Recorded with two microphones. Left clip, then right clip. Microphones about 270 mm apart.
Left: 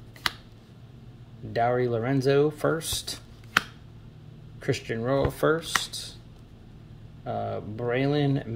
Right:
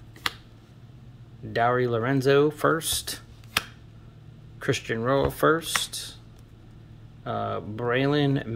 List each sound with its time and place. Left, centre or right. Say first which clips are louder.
1.5 s speech: right 2 dB; centre
4.6 s speech: right 2 dB; centre
7.2 s speech: right 2 dB; centre